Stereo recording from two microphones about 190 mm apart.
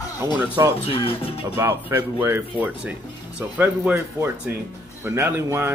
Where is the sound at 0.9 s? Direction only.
30° left (ahead or behind).